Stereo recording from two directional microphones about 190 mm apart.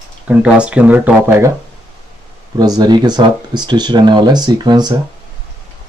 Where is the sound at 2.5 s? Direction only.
20° right (ahead or behind).